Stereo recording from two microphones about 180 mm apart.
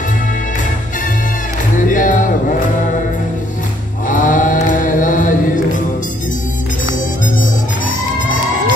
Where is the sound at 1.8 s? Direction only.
45° left (ahead or behind).